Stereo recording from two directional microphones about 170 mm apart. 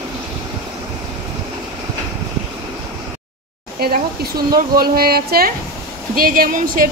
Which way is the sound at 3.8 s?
65° right (ahead or behind).